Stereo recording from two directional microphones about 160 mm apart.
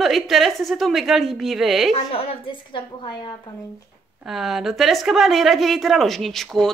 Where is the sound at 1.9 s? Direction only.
35° left (ahead or behind).